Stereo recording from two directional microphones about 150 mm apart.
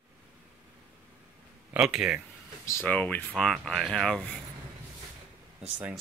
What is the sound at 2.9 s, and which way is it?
Speech, 10° left (ahead or behind).